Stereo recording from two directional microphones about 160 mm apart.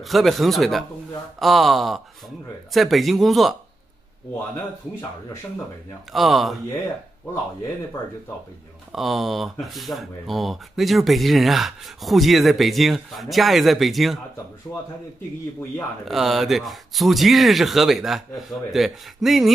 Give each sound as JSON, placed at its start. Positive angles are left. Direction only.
{"t": 0.0, "sound": "speech", "side_deg": 0}
{"t": 6.1, "sound": "speech", "side_deg": 0}
{"t": 8.9, "sound": "speech", "side_deg": 0}
{"t": 16.1, "sound": "speech", "side_deg": 0}